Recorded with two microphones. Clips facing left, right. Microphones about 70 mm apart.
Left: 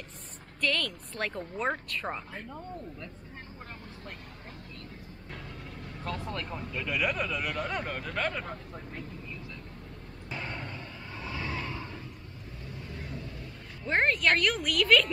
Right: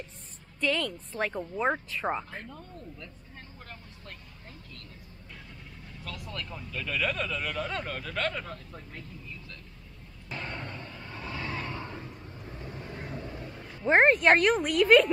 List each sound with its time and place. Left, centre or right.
0.6 s speech: centre
6.0 s speech: left
6.7 s speech: centre
10.3 s vehicle: centre
12.4 s vehicle: right
13.8 s a woman's voice: right